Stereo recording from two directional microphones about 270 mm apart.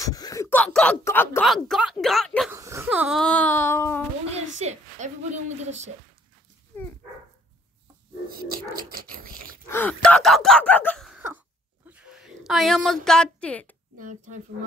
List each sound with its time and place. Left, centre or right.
0.0 s speech: centre
2.5 s a sound: centre
4.6 s speech: right
8.3 s speech: right
9.7 s a woman's voice: centre
13.9 s speech: right